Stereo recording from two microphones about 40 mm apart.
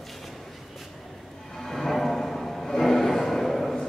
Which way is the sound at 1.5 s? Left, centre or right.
Centre.